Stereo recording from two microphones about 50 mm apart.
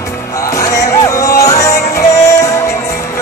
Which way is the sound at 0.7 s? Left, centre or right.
Left.